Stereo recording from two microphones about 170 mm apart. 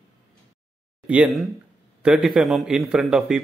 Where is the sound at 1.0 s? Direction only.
5° right (ahead or behind).